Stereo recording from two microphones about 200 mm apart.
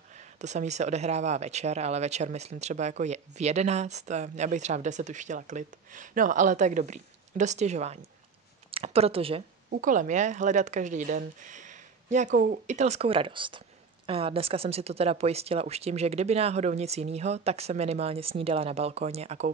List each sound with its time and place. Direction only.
0.4 s speech: 35° right (ahead or behind)
9.7 s speech: 40° right (ahead or behind)